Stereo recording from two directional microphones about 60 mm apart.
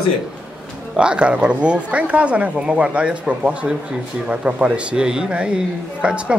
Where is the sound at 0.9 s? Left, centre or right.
Centre.